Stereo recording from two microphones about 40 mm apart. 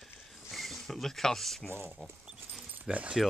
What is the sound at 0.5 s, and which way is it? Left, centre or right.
Speech, centre.